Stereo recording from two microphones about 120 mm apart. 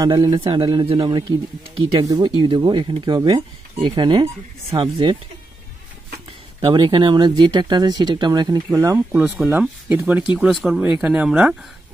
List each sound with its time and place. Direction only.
0.0 s speech: 40° right (ahead or behind)
4.6 s speech: 50° right (ahead or behind)
6.6 s speech: 40° right (ahead or behind)
8.7 s speech: 20° right (ahead or behind)
10.5 s speech: centre (ahead or behind)